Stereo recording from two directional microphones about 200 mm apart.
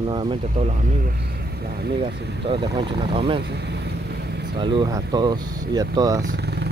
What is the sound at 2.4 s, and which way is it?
Speech, 25° right (ahead or behind).